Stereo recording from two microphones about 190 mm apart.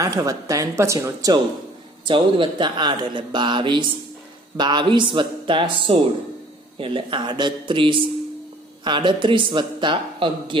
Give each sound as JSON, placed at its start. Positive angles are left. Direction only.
{"t": 0.0, "sound": "a woman's voice", "side_deg": -15}